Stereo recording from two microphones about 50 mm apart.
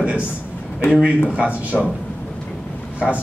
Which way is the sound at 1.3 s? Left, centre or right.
Right.